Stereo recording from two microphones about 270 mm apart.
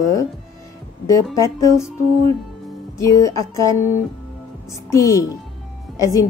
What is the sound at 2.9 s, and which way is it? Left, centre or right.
Speech, centre.